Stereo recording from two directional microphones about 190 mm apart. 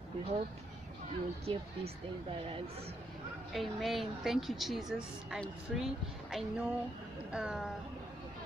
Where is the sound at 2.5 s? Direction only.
30° right (ahead or behind).